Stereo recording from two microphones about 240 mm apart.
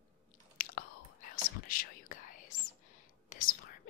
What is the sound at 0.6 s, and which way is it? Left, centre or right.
Chewing, left.